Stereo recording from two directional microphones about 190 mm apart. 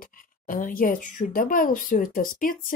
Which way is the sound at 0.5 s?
45° left (ahead or behind).